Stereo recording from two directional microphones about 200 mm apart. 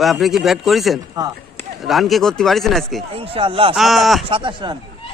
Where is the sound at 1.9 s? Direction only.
Centre (ahead or behind).